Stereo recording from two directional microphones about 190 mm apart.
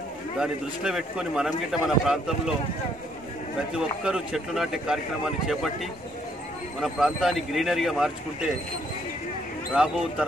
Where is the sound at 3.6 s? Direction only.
5° right (ahead or behind).